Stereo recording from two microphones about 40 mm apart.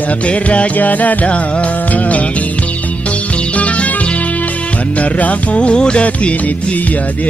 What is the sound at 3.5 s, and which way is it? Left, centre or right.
Music, left.